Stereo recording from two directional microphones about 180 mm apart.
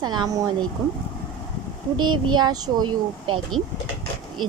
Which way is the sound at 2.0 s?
25° right (ahead or behind).